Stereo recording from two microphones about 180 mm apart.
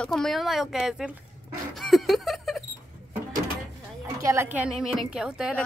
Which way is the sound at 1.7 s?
Centre (ahead or behind).